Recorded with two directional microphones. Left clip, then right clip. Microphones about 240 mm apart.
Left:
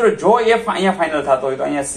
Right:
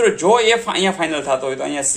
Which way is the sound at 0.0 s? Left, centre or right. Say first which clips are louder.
Even; right.